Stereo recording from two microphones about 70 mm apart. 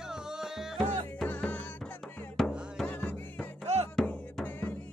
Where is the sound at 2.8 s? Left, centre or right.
Left.